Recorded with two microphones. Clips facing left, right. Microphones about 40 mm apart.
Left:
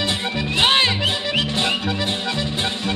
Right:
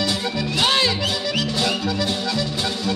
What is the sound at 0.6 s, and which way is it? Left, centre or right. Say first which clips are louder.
Music: left 3 dB; left.